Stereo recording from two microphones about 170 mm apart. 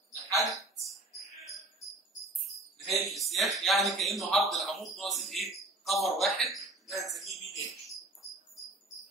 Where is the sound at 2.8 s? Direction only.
Centre (ahead or behind).